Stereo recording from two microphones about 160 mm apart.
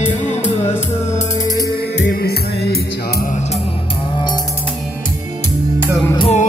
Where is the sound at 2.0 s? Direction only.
85° left.